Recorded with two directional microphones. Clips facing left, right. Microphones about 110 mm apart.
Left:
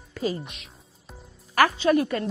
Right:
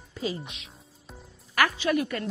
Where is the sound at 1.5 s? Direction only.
35° left (ahead or behind).